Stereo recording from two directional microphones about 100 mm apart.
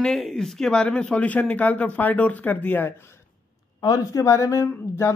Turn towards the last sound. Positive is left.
turn(degrees=25)  # may be behind; listen again after turning